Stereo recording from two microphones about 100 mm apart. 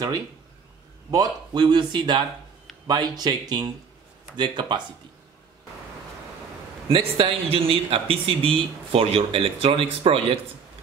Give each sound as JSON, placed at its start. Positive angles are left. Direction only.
{"t": 1.1, "sound": "speech", "side_deg": -40}
{"t": 6.9, "sound": "speech", "side_deg": -65}